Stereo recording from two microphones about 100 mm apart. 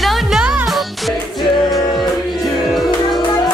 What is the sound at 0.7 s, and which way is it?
Music, centre (ahead or behind).